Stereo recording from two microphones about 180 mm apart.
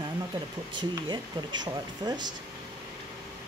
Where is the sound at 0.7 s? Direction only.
25° right (ahead or behind).